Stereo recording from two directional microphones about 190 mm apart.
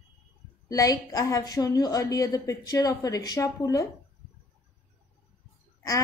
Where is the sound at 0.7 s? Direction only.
20° left (ahead or behind).